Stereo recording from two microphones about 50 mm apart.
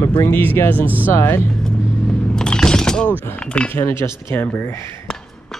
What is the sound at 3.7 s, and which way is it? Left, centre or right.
Speech, left.